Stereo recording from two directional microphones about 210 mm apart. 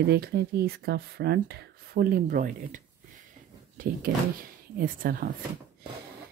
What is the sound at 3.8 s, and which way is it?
Speech, 40° right (ahead or behind).